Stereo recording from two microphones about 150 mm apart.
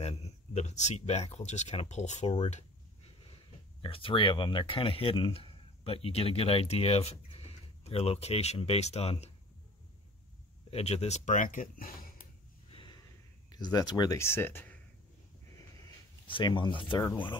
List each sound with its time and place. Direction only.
0.0 s speech: 45° left (ahead or behind)
2.5 s a sound: 45° left (ahead or behind)
3.8 s speech: 35° left (ahead or behind)
10.7 s speech: 45° left (ahead or behind); by 12.1 s 70° left (ahead or behind)
12.6 s a sound: 35° left (ahead or behind)
13.5 s speech: 25° left (ahead or behind)
16.3 s speech: 35° left (ahead or behind)